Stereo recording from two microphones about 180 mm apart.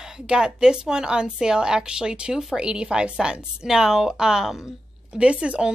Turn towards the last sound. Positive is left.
turn(degrees=-5)  # may be behind; listen again after turning